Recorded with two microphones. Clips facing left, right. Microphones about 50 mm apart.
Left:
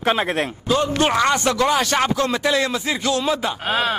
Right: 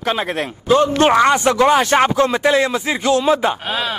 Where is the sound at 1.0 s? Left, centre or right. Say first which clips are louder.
Right 5 dB; right.